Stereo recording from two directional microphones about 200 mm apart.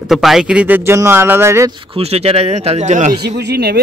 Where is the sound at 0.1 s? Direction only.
Centre (ahead or behind).